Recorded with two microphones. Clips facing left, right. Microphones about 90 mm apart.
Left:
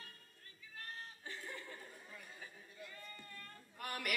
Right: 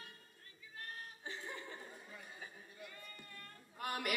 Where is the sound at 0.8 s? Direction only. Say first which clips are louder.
Right 2 dB; 20° right (ahead or behind).